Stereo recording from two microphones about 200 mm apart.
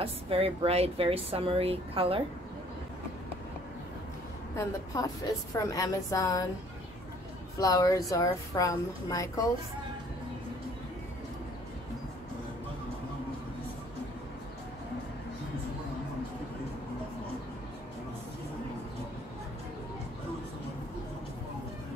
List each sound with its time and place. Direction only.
0.0 s speech: 30° right (ahead or behind)
4.6 s a woman's voice: 15° left (ahead or behind)
7.5 s a woman's voice: 15° left (ahead or behind)